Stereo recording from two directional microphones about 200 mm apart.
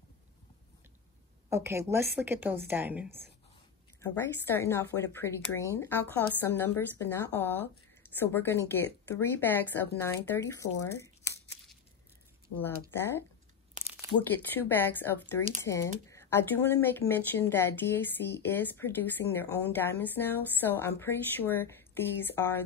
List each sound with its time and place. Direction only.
1.5 s a woman's voice: 15° right (ahead or behind)
4.0 s speech: 10° left (ahead or behind)
13.8 s crumpling: 40° right (ahead or behind)
14.3 s speech: 10° left (ahead or behind)